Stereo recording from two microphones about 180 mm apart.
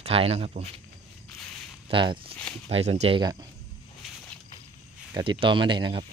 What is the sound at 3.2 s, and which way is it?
Speech, 20° right (ahead or behind).